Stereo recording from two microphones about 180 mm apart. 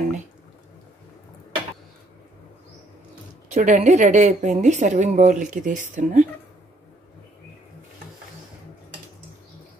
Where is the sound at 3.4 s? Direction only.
45° right (ahead or behind).